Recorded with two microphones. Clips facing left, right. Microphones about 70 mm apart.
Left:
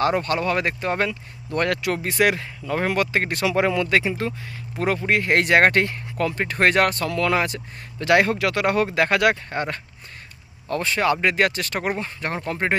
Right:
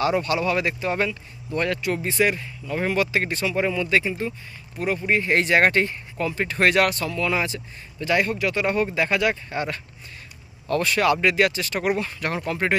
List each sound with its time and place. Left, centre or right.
0.0 s speech: left
2.8 s speech: left
3.4 s speech: left
4.7 s speech: left
7.1 s speech: left
8.0 s speech: left
9.5 s speech: left
10.7 s speech: left
12.0 s speech: left